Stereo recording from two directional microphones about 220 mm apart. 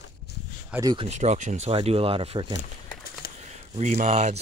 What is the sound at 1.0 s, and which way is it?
Speech, 30° right (ahead or behind).